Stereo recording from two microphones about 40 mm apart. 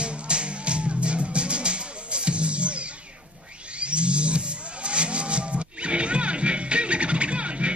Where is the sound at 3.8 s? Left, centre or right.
Right.